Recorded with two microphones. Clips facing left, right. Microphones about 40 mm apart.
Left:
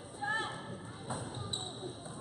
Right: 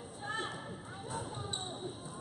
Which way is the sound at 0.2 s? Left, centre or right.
Centre.